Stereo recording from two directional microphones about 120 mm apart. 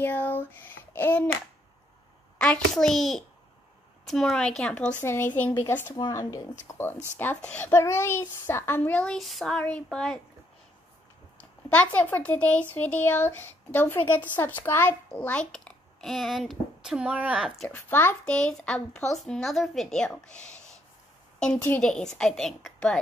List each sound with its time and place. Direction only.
0.0 s speech: 15° left (ahead or behind)
2.3 s a woman's voice: 10° left (ahead or behind)
5.0 s a woman's voice: 20° left (ahead or behind)
11.7 s speech: 10° left (ahead or behind); by 17.5 s 10° right (ahead or behind)
17.6 s a woman's voice: 20° left (ahead or behind)